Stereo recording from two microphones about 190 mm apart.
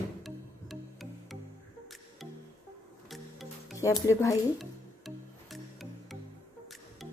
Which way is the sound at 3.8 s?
15° left (ahead or behind).